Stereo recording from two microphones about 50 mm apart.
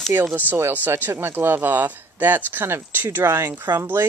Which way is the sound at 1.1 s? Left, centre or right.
Right.